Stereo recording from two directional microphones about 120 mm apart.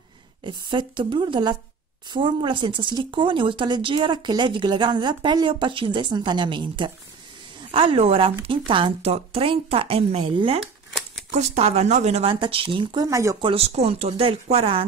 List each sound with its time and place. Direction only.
0.4 s speech: 40° right (ahead or behind)
11.3 s speech: 65° right (ahead or behind); by 13.4 s 25° right (ahead or behind)
13.4 s speech: 50° right (ahead or behind)